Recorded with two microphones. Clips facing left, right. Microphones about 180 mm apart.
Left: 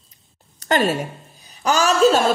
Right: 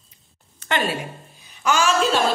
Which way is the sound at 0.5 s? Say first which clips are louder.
Left 5 dB; 40° left (ahead or behind).